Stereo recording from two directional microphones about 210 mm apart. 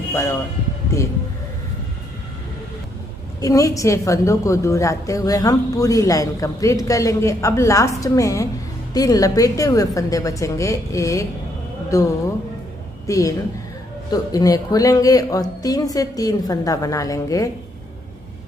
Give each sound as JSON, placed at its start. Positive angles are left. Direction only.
{"t": 0.1, "sound": "speech", "side_deg": 10}
{"t": 3.3, "sound": "a woman's voice", "side_deg": 15}